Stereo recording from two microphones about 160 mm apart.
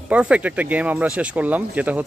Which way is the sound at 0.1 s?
10° right (ahead or behind).